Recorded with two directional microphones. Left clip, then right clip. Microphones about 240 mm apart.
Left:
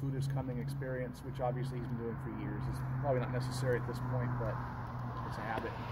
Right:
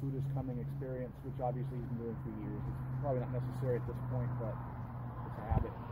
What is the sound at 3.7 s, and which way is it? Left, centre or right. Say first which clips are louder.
Speech: left 2 dB; left.